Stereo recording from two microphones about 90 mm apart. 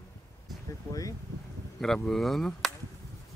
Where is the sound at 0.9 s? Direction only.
40° left (ahead or behind).